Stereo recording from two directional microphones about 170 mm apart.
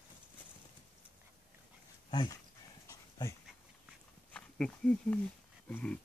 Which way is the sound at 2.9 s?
20° left (ahead or behind).